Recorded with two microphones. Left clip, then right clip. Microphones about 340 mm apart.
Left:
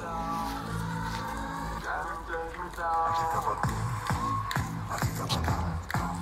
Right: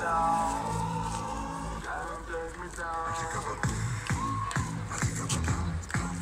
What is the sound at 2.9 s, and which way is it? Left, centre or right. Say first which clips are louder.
Music: left 7 dB; centre.